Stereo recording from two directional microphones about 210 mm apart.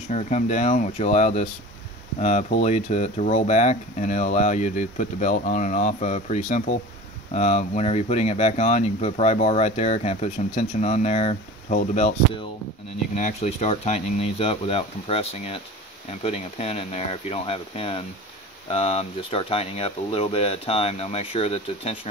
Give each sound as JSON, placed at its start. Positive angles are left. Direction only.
{"t": 0.1, "sound": "speech", "side_deg": 35}